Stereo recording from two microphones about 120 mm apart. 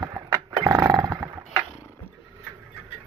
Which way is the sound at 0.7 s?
25° right (ahead or behind).